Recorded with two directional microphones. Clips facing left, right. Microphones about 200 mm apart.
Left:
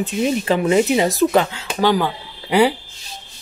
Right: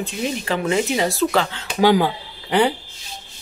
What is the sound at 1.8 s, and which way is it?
Speech, 15° right (ahead or behind).